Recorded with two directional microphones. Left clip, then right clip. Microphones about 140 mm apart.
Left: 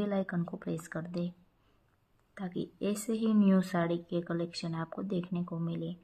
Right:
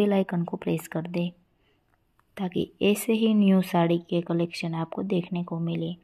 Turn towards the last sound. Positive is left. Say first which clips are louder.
# right 7 dB
turn(degrees=-30)  # may be behind; listen again after turning